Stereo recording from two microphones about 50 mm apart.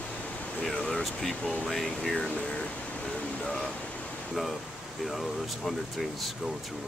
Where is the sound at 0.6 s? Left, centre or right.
Centre.